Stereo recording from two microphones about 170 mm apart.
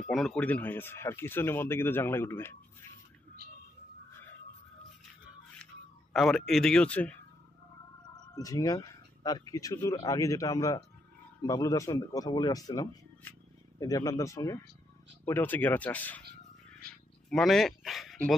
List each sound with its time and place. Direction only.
0.0 s speech: centre (ahead or behind)
6.1 s speech: centre (ahead or behind)
8.4 s speech: 20° left (ahead or behind)
17.3 s speech: centre (ahead or behind)